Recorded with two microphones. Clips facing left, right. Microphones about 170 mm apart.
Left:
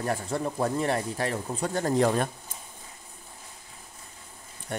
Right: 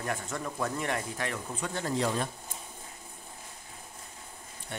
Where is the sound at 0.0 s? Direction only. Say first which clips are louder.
Left 6 dB; 35° left (ahead or behind); by 2.2 s 50° left (ahead or behind).